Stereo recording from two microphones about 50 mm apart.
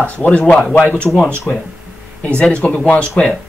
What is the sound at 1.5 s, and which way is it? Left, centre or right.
Speech, left.